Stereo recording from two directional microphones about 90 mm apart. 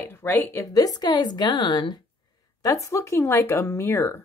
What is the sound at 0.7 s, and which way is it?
A woman's voice, 45° left (ahead or behind).